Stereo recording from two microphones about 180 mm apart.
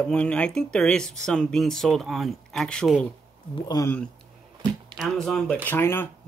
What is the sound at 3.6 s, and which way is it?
Speech, 20° left (ahead or behind).